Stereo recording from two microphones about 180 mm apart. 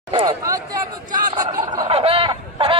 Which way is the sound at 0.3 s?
20° right (ahead or behind).